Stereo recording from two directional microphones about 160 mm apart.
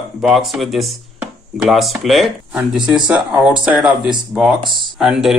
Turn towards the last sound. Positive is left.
turn(degrees=-5)  # may be behind; listen again after turning